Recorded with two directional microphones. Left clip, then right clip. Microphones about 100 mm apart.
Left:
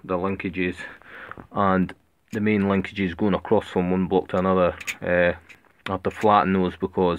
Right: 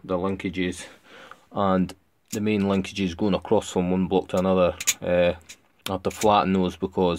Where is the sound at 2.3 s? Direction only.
15° right (ahead or behind).